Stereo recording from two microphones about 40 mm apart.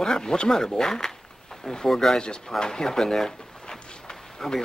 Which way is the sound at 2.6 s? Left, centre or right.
Centre.